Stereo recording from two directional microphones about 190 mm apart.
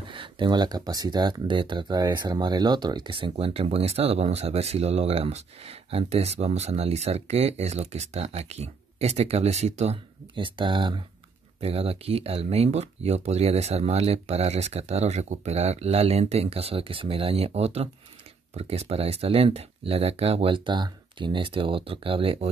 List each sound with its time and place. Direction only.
0.1 s speech: 25° right (ahead or behind)